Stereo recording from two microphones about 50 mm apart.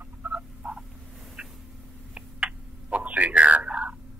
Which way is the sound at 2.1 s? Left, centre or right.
Centre.